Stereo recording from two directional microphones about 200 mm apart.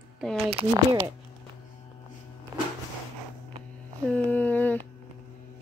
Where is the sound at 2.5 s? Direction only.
15° right (ahead or behind).